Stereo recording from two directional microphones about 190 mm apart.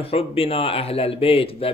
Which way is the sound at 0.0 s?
30° left (ahead or behind).